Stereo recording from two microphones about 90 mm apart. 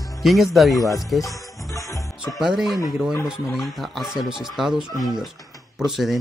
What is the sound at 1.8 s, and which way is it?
Music, 35° left (ahead or behind).